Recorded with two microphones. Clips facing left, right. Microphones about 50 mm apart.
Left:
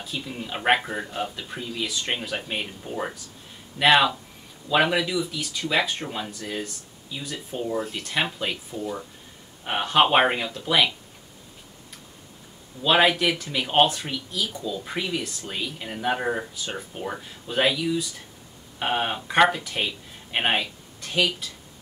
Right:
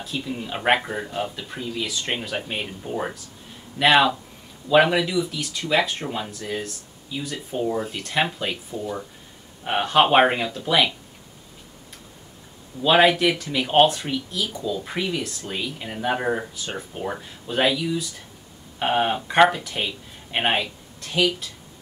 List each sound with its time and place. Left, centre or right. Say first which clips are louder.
0.0 s speech: right 3 dB; centre
12.8 s speech: right 3 dB; centre